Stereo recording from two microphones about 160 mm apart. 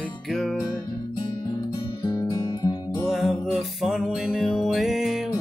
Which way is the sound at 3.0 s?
Centre (ahead or behind).